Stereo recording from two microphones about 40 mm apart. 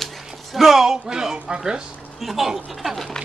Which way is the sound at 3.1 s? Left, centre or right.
Centre.